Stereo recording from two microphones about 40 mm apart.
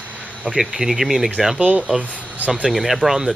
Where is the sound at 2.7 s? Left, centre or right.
Centre.